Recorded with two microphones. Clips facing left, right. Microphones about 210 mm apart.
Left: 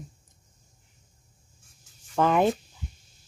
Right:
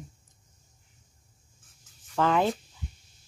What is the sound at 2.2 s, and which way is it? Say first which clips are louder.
Speech: left 3 dB; 15° left (ahead or behind).